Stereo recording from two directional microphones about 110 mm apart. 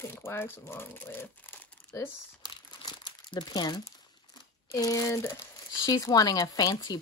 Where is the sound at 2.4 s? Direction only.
40° left (ahead or behind).